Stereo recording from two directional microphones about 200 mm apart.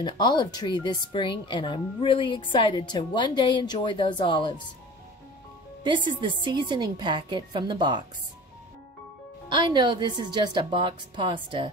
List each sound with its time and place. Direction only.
0.0 s speech: 20° left (ahead or behind)
5.9 s a woman's voice: 25° right (ahead or behind)
9.5 s a woman's voice: 20° right (ahead or behind)